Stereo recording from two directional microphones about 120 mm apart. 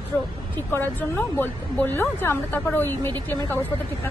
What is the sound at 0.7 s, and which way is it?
Speech, 15° left (ahead or behind).